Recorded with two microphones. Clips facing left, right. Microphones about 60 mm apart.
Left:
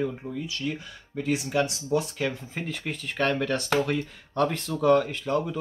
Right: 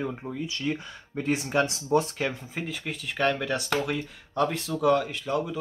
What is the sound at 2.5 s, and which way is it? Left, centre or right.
Speech, centre.